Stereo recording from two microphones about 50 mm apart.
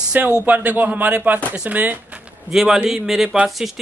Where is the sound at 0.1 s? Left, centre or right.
Right.